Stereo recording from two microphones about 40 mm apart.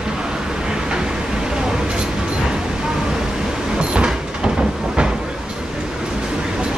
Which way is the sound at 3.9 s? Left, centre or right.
Centre.